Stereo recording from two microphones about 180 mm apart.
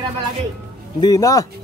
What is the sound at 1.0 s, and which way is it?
Speech, 20° left (ahead or behind).